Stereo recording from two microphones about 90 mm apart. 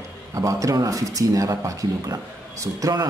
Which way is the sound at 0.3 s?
35° right (ahead or behind).